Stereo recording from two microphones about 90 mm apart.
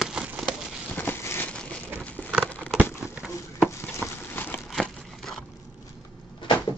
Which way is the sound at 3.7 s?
25° left (ahead or behind).